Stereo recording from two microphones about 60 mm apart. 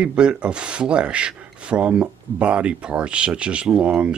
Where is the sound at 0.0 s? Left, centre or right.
Centre.